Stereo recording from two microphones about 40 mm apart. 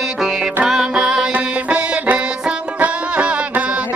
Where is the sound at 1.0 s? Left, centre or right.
Centre.